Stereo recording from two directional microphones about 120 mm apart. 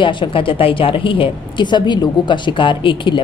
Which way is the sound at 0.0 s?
45° left (ahead or behind).